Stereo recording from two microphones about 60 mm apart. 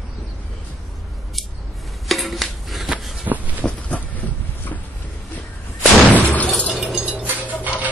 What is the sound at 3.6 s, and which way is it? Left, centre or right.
Vehicle, left.